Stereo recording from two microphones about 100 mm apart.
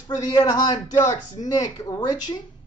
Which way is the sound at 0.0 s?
45° left (ahead or behind).